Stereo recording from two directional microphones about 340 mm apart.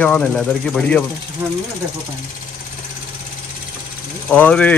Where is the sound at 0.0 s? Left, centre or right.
Centre.